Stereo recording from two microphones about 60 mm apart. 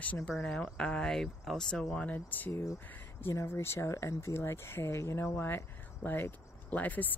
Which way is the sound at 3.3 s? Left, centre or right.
Left.